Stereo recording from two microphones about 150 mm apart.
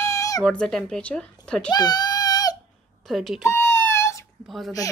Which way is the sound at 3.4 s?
15° left (ahead or behind).